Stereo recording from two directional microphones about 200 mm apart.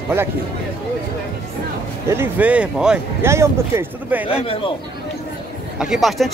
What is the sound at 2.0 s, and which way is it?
Speech, 10° right (ahead or behind).